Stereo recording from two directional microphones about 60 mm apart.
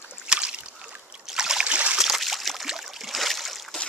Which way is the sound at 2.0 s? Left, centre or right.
Centre.